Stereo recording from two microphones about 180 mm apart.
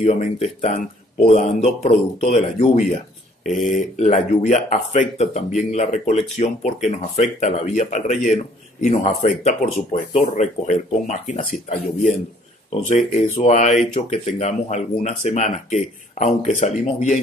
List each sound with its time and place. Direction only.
0.0 s speech: 40° left (ahead or behind)